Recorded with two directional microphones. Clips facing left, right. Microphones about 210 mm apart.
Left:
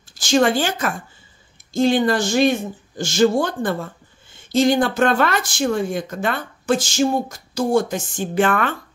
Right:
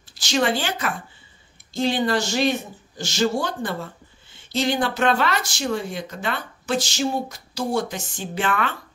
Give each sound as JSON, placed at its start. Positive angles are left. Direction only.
{"t": 0.1, "sound": "a woman's voice", "side_deg": 45}